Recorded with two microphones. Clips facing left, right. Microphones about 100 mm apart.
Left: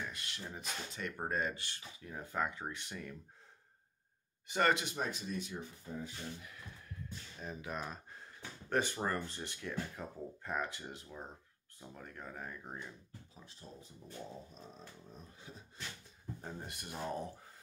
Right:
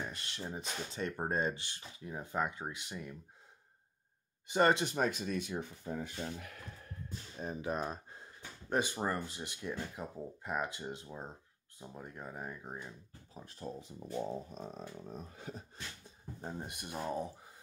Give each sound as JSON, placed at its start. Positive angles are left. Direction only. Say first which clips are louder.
{"t": 0.0, "sound": "speech", "louder": "right 3 dB", "side_deg": -30}
{"t": 4.5, "sound": "speech", "louder": "right 3 dB", "side_deg": -25}
{"t": 4.9, "sound": "speech", "louder": "right 5 dB", "side_deg": -70}
{"t": 7.1, "sound": "speech", "louder": "right 5 dB", "side_deg": -35}
{"t": 8.1, "sound": "speech", "louder": "even", "side_deg": -20}
{"t": 13.3, "sound": "speech", "louder": "right 13 dB", "side_deg": -50}
{"t": 13.7, "sound": "speech", "louder": "right 7 dB", "side_deg": -80}
{"t": 14.5, "sound": "speech", "louder": "right 8 dB", "side_deg": -65}
{"t": 16.3, "sound": "speech", "louder": "right 5 dB", "side_deg": -20}